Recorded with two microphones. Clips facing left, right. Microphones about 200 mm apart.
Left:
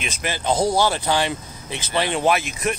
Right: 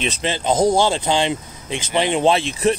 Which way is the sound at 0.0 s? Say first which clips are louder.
Right 4 dB; 20° right (ahead or behind).